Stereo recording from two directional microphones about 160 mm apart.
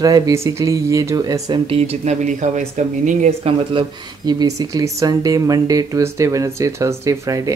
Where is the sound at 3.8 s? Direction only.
30° right (ahead or behind).